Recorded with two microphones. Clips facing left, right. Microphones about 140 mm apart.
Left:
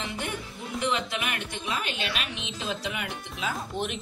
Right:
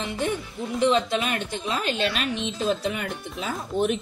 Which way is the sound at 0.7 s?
30° right (ahead or behind).